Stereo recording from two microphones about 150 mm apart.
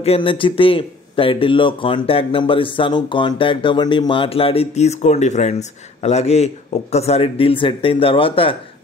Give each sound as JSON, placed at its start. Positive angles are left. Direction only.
{"t": 0.0, "sound": "speech", "side_deg": 40}